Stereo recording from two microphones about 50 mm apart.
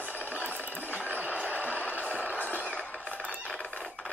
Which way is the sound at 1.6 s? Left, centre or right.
Left.